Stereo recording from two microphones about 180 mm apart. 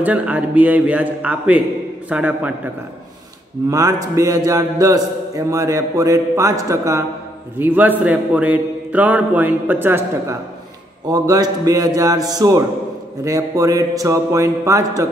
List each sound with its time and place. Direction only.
0.0 s a man's voice: 10° right (ahead or behind)
3.7 s a man's voice: 15° right (ahead or behind)